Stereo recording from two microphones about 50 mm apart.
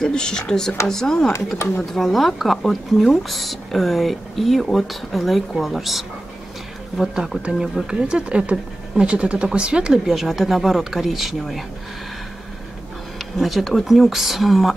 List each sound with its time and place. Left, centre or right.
0.0 s speech: centre
7.5 s speech: centre
7.8 s speech: centre
13.2 s speech: centre